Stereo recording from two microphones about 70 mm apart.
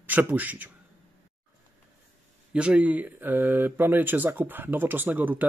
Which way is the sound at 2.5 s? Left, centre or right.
Centre.